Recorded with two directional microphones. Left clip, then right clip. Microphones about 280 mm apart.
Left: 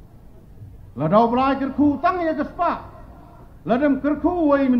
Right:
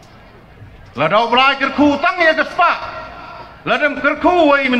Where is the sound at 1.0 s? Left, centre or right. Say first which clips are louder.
Right 5 dB; right.